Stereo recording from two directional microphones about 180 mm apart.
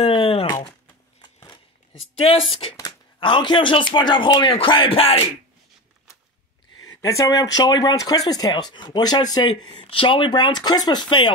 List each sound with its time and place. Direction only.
0.0 s a sound: 30° left (ahead or behind)
2.2 s speech: 35° left (ahead or behind)
6.8 s speech: 20° left (ahead or behind)